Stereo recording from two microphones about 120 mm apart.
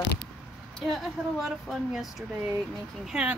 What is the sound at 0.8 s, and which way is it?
Speech, centre (ahead or behind).